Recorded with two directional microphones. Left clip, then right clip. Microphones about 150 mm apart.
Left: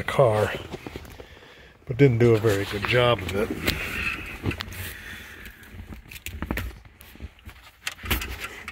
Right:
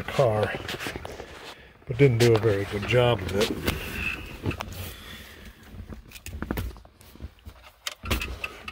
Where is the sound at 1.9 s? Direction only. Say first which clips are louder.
Left 1 dB; 10° left (ahead or behind).